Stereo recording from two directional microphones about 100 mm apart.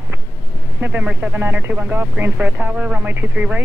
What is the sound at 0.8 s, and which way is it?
Speech, 15° right (ahead or behind).